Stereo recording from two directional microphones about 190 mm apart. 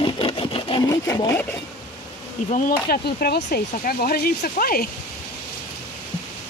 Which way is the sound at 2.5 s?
50° left (ahead or behind).